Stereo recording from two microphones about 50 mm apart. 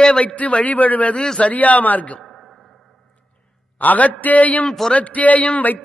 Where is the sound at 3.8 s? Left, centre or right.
Left.